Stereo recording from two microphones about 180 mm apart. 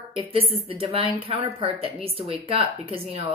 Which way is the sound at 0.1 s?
30° right (ahead or behind).